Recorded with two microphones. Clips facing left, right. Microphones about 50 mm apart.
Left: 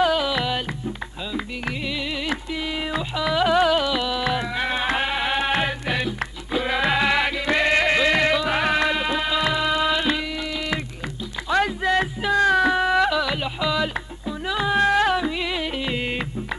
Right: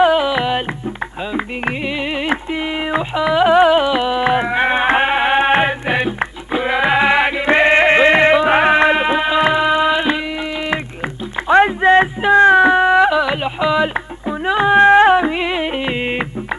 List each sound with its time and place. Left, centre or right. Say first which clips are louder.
0.0 s music: right 7 dB; right
2.9 s music: right 8 dB; right
11.4 s music: right 10 dB; right